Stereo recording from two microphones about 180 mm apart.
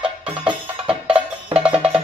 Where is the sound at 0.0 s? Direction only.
5° right (ahead or behind).